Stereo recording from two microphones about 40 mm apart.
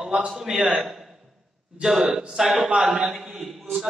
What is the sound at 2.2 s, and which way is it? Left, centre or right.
Speech, centre.